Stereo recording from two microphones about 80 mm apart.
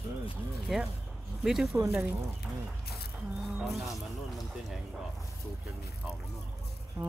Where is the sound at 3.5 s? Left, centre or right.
Centre.